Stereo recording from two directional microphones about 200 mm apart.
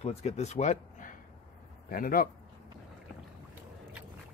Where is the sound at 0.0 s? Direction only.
35° left (ahead or behind).